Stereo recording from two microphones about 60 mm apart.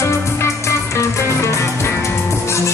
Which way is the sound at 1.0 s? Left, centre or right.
Left.